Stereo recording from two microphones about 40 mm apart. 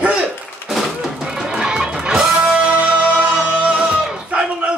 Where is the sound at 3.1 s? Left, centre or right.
Right.